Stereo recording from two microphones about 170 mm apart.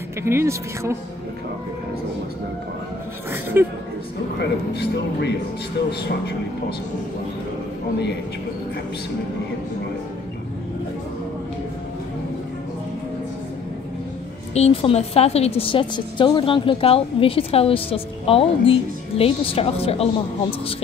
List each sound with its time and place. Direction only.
0.2 s speech: 15° right (ahead or behind)
3.3 s speech: 15° right (ahead or behind)
4.4 s a man's voice: 80° left
14.5 s a woman's voice: 35° left (ahead or behind)